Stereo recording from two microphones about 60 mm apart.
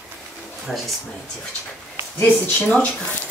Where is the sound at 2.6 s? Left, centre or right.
Left.